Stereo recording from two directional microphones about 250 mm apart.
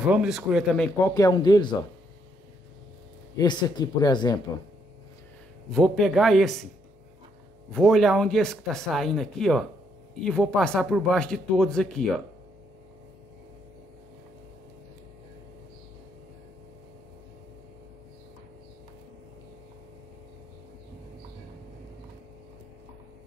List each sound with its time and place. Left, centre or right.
0.0 s speech: centre
3.3 s speech: centre
5.7 s a man's voice: centre
7.7 s a man's voice: centre